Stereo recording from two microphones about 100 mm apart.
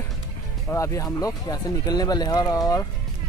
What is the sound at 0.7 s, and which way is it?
Speech, 30° left (ahead or behind).